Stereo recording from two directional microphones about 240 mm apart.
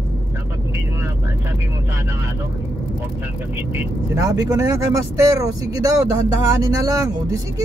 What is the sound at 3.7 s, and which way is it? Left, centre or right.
Speech, centre.